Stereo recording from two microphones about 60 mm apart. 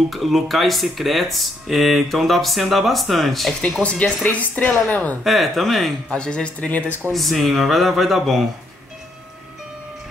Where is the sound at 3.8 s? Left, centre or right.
Centre.